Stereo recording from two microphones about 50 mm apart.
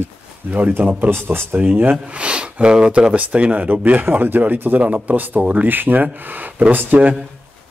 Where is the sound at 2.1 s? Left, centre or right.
Right.